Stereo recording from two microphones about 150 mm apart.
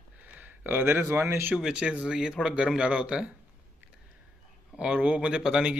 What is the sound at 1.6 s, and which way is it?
Speech, 5° right (ahead or behind).